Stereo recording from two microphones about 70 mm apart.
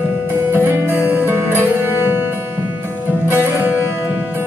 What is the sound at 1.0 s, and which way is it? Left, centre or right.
Music, centre.